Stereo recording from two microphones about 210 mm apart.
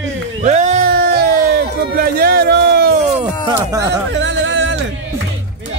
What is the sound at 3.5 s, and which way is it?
Speech, 15° right (ahead or behind).